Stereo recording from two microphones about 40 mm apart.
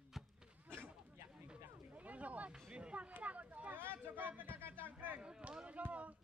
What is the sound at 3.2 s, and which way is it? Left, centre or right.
Speech, right.